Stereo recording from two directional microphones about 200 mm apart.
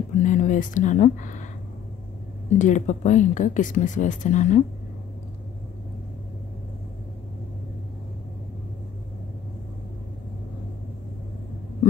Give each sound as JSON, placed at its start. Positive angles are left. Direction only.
{"t": 0.2, "sound": "speech", "side_deg": 40}
{"t": 2.6, "sound": "speech", "side_deg": 35}